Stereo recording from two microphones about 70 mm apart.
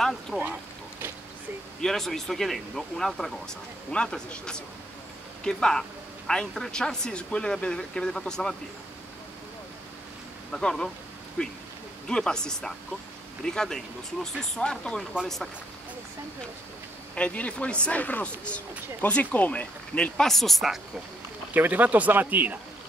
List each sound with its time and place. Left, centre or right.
1.8 s a woman's voice: centre
10.5 s a woman's voice: centre
17.1 s a woman's voice: centre
20.2 s speech: centre
21.5 s speech: right